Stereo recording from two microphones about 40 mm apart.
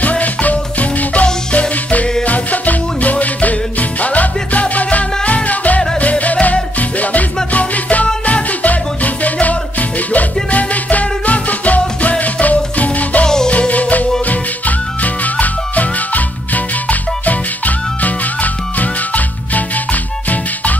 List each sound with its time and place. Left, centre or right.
0.0 s music: left
15.2 s music: left